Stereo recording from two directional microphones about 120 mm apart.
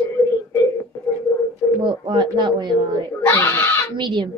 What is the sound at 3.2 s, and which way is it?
Speech, 25° left (ahead or behind).